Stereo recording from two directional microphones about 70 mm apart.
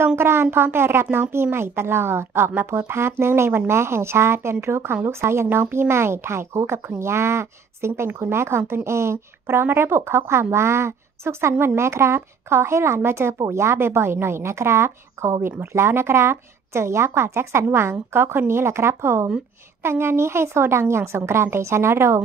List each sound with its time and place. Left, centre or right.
0.0 s speech: right